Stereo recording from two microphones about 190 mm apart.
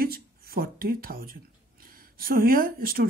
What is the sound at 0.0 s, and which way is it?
Speech, 50° right (ahead or behind).